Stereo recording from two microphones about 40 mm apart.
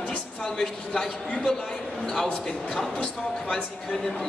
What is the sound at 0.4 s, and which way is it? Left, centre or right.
A man's voice, centre.